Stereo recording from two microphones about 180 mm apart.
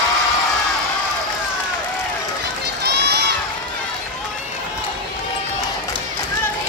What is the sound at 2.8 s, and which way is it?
Run, 65° right (ahead or behind).